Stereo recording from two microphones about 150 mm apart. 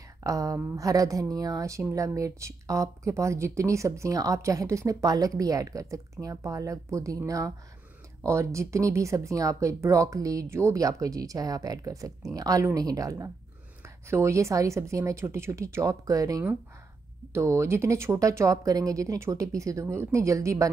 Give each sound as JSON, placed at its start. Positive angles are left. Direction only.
{"t": 0.2, "sound": "a woman's voice", "side_deg": -20}